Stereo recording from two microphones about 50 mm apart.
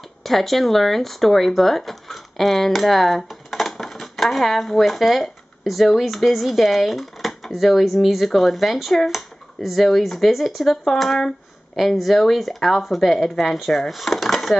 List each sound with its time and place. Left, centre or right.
0.2 s speech: centre
11.7 s speech: centre